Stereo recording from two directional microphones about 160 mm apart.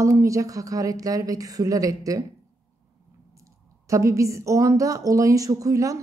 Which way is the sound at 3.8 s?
20° right (ahead or behind).